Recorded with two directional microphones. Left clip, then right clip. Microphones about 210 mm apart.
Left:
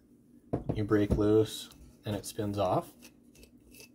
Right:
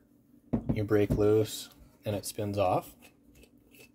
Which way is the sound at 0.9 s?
50° right (ahead or behind).